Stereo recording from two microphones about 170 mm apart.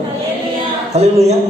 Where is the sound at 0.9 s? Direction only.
40° right (ahead or behind).